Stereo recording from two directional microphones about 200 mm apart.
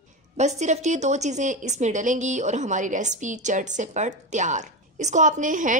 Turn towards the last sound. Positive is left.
turn(degrees=-40)  # may be behind; listen again after turning